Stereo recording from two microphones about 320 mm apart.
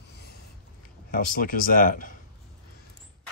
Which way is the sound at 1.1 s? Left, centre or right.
Left.